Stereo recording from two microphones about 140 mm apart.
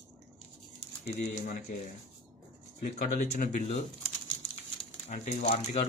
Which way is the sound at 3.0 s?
70° left (ahead or behind).